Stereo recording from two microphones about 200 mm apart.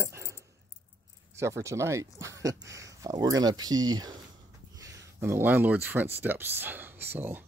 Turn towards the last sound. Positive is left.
turn(degrees=-10)  # may be behind; listen again after turning